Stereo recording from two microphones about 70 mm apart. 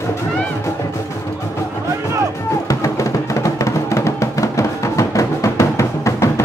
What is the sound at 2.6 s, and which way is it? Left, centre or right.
Music, left.